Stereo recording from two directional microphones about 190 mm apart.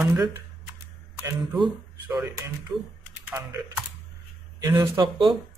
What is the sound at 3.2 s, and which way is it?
Speech, 15° right (ahead or behind).